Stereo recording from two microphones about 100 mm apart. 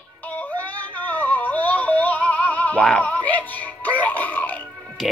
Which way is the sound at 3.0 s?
15° left (ahead or behind).